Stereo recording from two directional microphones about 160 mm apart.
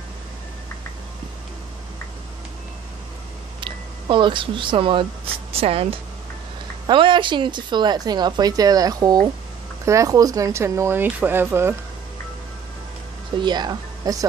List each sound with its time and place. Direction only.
3.6 s a woman's voice: 30° right (ahead or behind); by 11.7 s 15° right (ahead or behind)
13.4 s speech: 25° right (ahead or behind)